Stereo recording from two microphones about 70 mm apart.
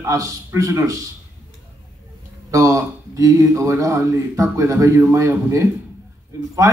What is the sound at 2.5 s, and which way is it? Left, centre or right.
A man's voice, right.